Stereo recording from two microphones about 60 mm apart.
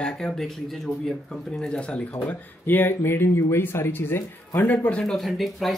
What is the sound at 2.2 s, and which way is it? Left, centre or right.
Speech, left.